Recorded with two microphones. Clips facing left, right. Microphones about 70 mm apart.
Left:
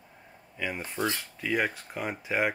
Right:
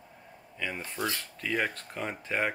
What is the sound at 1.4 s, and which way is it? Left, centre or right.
Speech, centre.